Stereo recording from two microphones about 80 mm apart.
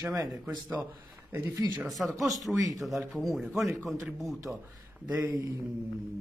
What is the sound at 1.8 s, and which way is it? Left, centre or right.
Speech, centre.